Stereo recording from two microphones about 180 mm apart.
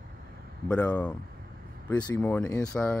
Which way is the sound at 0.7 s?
10° left (ahead or behind).